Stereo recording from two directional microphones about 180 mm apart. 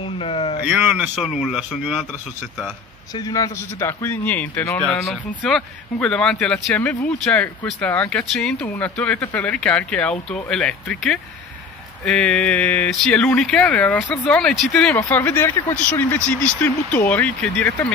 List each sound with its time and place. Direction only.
0.2 s a sound: 30° left (ahead or behind)
0.7 s speech: 10° right (ahead or behind)
3.2 s a man's voice: 20° left (ahead or behind)